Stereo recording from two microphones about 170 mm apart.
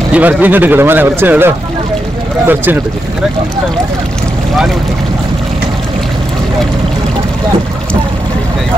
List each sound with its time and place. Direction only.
0.1 s speech: 10° right (ahead or behind)